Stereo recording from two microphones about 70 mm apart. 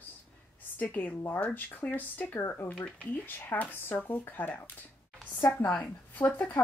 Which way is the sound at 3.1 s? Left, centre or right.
Left.